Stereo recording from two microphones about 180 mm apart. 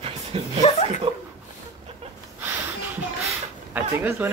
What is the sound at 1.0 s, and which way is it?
Speech, 30° right (ahead or behind).